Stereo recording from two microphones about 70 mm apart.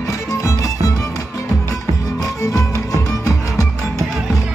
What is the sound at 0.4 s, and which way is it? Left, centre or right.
Music, left.